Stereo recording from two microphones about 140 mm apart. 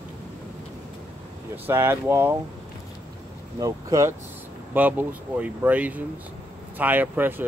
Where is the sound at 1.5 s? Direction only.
15° right (ahead or behind).